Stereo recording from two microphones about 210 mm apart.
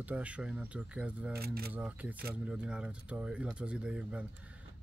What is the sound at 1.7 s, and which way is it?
Speech, 5° right (ahead or behind).